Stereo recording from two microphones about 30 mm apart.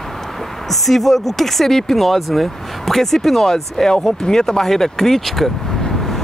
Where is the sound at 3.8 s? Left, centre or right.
Left; by 5.5 s centre.